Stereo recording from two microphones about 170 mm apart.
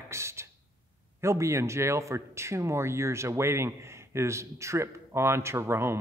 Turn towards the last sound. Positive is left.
turn(degrees=-15)  # may be behind; listen again after turning